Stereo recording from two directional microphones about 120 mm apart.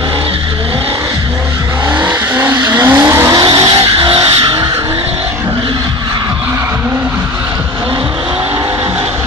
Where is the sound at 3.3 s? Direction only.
35° right (ahead or behind).